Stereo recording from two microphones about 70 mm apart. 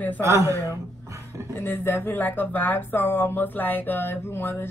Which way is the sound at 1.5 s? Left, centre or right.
Left.